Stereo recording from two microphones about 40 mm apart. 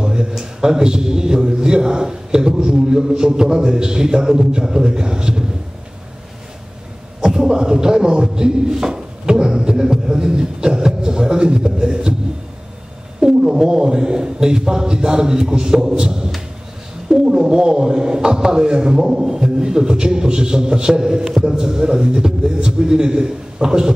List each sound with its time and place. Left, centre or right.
0.0 s a sound: centre
0.4 s a man's voice: centre
7.2 s a man's voice: centre
13.2 s a man's voice: centre
15.9 s a sound: centre
17.1 s a man's voice: centre